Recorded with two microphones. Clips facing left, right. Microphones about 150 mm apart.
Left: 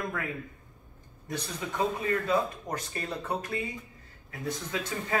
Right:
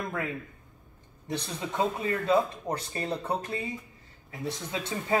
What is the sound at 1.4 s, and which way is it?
Speech, 25° right (ahead or behind).